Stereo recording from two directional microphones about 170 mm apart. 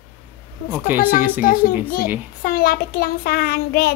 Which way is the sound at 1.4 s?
55° left (ahead or behind).